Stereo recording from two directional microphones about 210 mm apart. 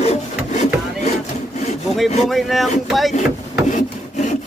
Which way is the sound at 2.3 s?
Centre (ahead or behind).